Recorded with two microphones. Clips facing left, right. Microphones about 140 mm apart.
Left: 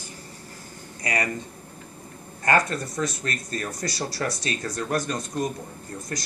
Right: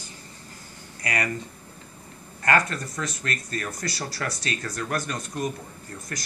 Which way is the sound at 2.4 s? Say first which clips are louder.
Left 1 dB; 20° left (ahead or behind).